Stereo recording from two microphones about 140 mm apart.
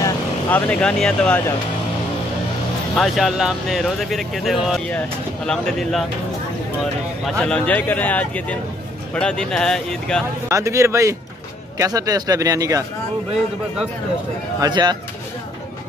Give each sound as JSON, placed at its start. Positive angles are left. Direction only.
{"t": 0.5, "sound": "speech", "side_deg": 10}
{"t": 3.0, "sound": "speech", "side_deg": 0}
{"t": 10.5, "sound": "speech", "side_deg": -20}
{"t": 14.6, "sound": "speech", "side_deg": -30}